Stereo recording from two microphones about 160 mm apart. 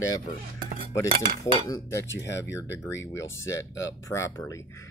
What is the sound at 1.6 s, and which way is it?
Speech, 20° left (ahead or behind).